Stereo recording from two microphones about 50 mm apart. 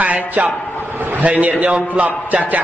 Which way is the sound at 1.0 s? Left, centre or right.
Right.